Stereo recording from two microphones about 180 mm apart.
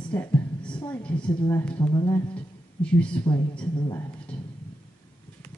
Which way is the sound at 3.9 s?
20° left (ahead or behind).